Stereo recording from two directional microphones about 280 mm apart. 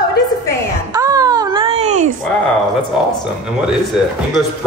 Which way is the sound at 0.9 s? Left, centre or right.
Centre.